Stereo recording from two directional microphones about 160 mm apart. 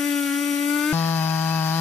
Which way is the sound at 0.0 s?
Centre (ahead or behind).